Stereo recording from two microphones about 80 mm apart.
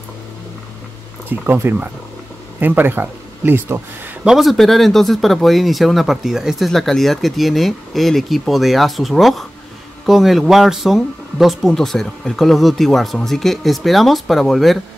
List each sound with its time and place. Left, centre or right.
1.3 s speech: right
4.2 s speech: centre